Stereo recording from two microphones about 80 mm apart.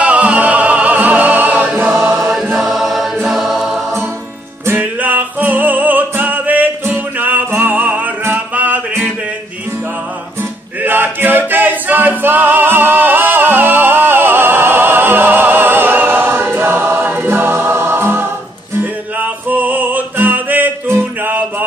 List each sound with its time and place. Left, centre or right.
0.0 s music: centre
2.1 s choir: centre
3.3 s music: centre
4.6 s music: right
10.8 s music: right